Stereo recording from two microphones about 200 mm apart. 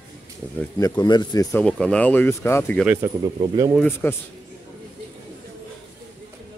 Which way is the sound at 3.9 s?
10° left (ahead or behind).